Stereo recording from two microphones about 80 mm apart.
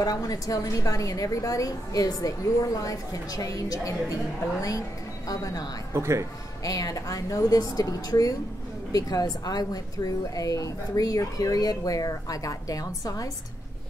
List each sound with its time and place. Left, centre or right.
0.0 s a woman's voice: left
5.9 s speech: right
6.6 s a woman's voice: left